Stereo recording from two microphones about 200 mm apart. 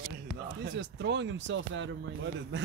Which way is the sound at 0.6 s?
60° right (ahead or behind).